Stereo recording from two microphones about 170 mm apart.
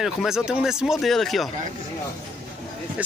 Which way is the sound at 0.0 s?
5° right (ahead or behind).